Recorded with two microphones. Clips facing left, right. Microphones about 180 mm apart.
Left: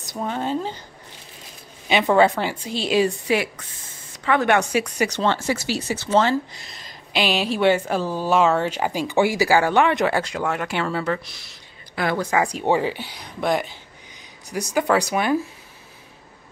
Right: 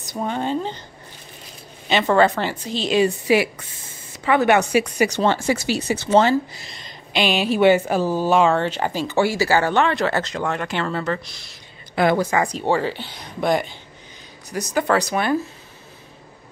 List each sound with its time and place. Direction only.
0.0 s speech: centre (ahead or behind)
1.9 s speech: 10° left (ahead or behind)
3.3 s speech: 5° right (ahead or behind)
6.5 s speech: centre (ahead or behind)
11.9 s speech: 20° right (ahead or behind)
12.2 s speech: 5° left (ahead or behind)